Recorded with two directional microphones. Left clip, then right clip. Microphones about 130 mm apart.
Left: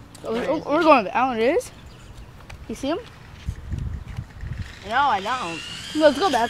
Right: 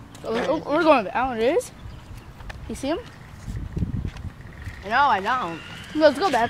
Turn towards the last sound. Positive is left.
turn(degrees=35)  # may be behind; listen again after turning